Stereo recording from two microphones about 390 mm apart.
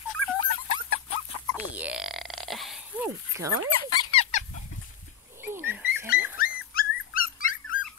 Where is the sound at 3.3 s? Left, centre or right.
Centre.